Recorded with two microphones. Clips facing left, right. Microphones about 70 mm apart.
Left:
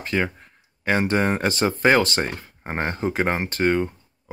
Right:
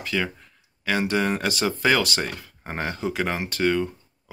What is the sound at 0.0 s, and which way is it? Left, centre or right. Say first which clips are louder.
Speech: left 3 dB; left.